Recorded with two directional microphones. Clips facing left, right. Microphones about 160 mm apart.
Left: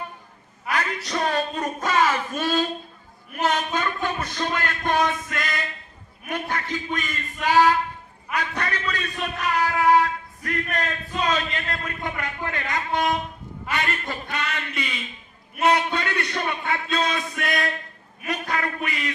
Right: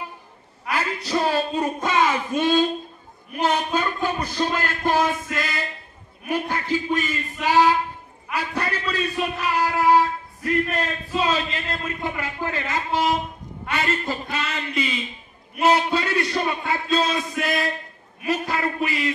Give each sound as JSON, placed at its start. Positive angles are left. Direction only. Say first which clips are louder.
{"t": 0.7, "sound": "a man's voice", "louder": "right 1 dB", "side_deg": -5}
{"t": 13.7, "sound": "music", "louder": "right 1 dB", "side_deg": 0}
{"t": 14.0, "sound": "speech", "louder": "right 2 dB", "side_deg": -5}
{"t": 15.9, "sound": "music", "louder": "right 4 dB", "side_deg": -5}